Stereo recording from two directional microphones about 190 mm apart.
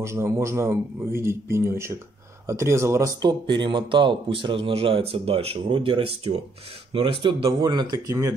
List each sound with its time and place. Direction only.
0.0 s a man's voice: 15° right (ahead or behind)